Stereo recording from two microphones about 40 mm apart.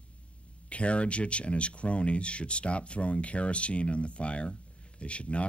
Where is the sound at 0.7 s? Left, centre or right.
Left.